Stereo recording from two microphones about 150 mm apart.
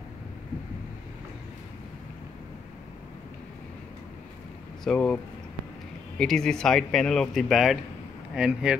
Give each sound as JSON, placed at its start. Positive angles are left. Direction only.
{"t": 4.8, "sound": "speech", "side_deg": 5}